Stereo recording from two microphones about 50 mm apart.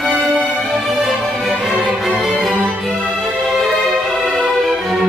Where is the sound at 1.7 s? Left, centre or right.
Centre.